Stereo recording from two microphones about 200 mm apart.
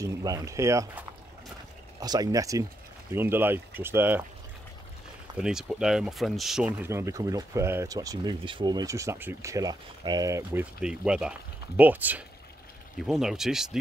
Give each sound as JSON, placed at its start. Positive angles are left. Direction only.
{"t": 0.0, "sound": "speech", "side_deg": -15}
{"t": 5.4, "sound": "speech", "side_deg": -5}